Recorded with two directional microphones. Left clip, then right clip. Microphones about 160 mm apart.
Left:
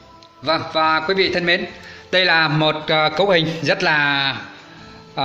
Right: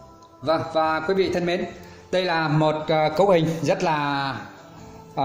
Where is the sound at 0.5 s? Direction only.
5° right (ahead or behind).